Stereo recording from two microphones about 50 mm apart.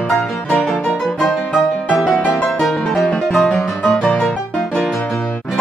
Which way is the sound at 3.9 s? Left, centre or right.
Centre.